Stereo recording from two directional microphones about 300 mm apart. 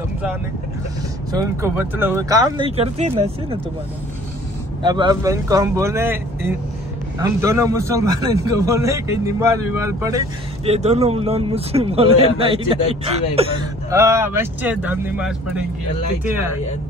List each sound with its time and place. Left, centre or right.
1.3 s a man's voice: centre
4.8 s a man's voice: centre
10.7 s a man's voice: right; by 15.6 s centre